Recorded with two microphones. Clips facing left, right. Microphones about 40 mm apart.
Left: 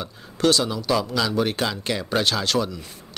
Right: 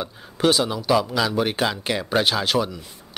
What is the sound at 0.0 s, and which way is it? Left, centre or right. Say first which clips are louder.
Speech: right 1 dB; centre.